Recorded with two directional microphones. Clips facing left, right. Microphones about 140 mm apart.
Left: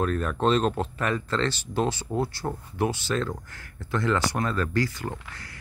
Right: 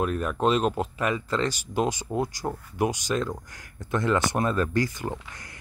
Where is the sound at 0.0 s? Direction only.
10° right (ahead or behind).